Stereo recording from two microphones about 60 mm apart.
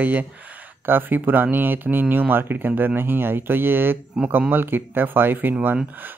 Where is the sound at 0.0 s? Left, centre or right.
Right.